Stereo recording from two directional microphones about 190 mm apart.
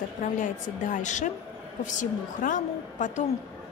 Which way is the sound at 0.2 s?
40° left (ahead or behind).